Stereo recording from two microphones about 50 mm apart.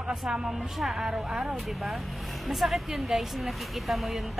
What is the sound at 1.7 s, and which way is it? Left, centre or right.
Speech, centre.